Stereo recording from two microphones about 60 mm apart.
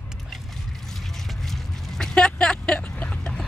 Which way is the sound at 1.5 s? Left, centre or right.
Centre.